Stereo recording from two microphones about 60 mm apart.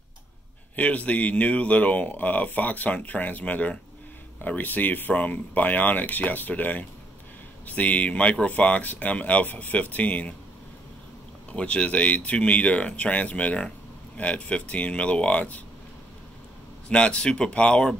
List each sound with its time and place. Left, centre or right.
0.7 s speech: left
11.5 s speech: centre
16.9 s speech: centre